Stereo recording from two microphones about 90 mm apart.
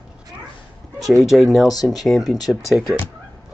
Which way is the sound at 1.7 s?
45° left (ahead or behind).